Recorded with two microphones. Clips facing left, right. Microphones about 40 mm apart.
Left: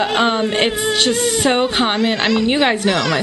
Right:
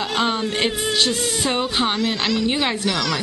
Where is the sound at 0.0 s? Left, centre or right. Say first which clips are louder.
Left 5 dB; left.